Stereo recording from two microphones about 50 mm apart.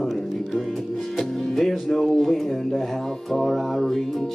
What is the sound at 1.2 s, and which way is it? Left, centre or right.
Music, centre.